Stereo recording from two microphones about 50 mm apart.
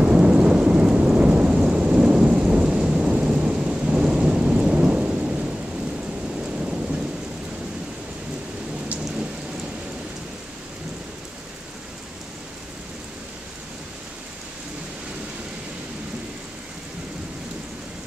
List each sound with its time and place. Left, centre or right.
0.0 s thunder: centre
6.6 s thunder: centre